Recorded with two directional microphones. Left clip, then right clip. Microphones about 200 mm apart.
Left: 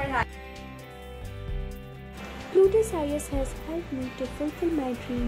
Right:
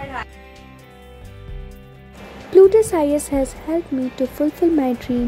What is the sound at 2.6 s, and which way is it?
Speech, 30° right (ahead or behind).